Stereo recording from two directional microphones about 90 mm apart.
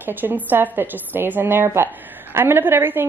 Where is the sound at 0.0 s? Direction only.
20° right (ahead or behind).